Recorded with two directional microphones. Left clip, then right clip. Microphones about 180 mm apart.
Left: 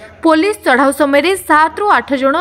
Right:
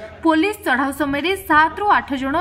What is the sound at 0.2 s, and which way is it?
A woman's voice, 30° left (ahead or behind).